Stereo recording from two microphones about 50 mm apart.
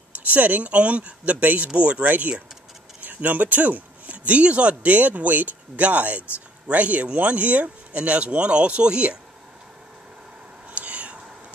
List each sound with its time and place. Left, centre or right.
0.3 s speech: right
10.7 s whispering: right